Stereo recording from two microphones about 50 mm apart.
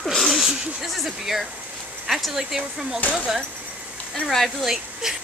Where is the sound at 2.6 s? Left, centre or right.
Centre.